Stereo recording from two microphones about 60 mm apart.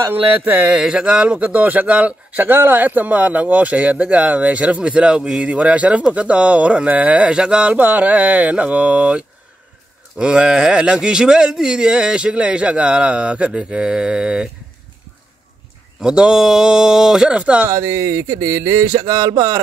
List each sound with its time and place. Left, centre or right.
0.1 s mantra: right
0.7 s speech: centre
2.4 s speech: right; by 7.7 s centre
7.7 s speech: right
10.1 s speech: centre
16.0 s speech: centre
17.6 s speech: right